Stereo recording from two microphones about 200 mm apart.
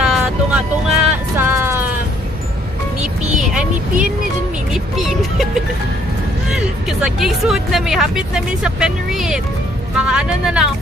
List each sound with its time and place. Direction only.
0.0 s vehicle: 5° right (ahead or behind)
3.0 s music: 35° right (ahead or behind)
4.9 s music: centre (ahead or behind)
6.9 s speech: centre (ahead or behind)